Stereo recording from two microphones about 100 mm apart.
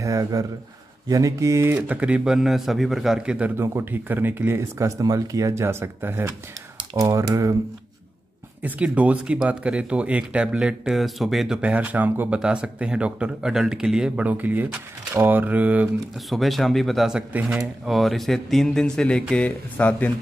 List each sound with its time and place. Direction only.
0.0 s speech: 35° right (ahead or behind)
1.9 s speech: 15° right (ahead or behind)
7.0 s speech: 35° right (ahead or behind)
8.6 s speech: 15° right (ahead or behind)
16.3 s speech: centre (ahead or behind)
17.3 s speech: 15° right (ahead or behind)
17.8 s speech: centre (ahead or behind)